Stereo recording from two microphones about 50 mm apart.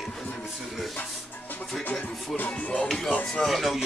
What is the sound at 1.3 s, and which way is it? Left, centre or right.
Music, left.